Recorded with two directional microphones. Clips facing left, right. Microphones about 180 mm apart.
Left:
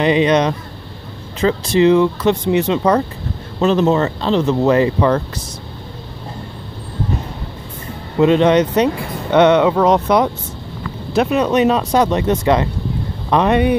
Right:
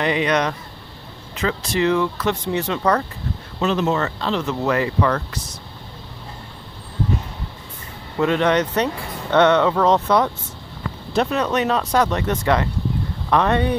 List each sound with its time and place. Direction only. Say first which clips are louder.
0.0 s speech: left 6 dB; 20° left (ahead or behind)
3.6 s speech: left 6 dB; 35° left (ahead or behind)
8.2 s speech: left 6 dB; 20° left (ahead or behind)